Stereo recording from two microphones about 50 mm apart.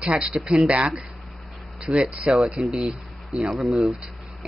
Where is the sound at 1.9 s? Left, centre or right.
Centre.